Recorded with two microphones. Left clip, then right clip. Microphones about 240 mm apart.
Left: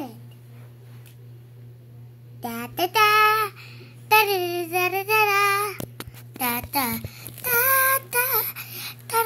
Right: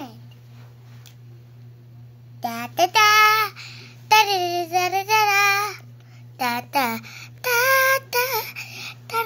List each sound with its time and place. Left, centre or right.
2.4 s child singing: centre